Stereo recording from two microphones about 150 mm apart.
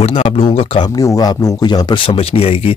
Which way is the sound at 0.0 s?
40° left (ahead or behind).